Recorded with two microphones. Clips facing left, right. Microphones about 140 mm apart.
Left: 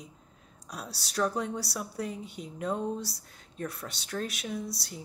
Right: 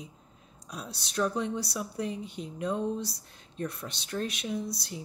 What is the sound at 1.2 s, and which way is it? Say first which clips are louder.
Speech: right 1 dB; 60° left (ahead or behind).